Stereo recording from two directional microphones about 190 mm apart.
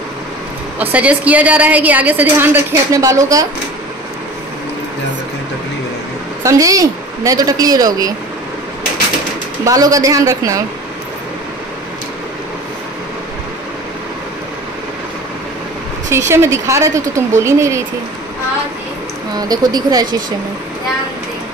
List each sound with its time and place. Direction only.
0.7 s a woman's voice: 5° right (ahead or behind)
6.4 s a woman's voice: 15° right (ahead or behind)
9.7 s a woman's voice: 20° right (ahead or behind)
16.1 s a woman's voice: 15° right (ahead or behind)
19.3 s a woman's voice: 20° right (ahead or behind)